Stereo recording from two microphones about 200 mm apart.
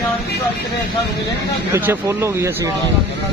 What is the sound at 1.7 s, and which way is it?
Speech, 10° right (ahead or behind).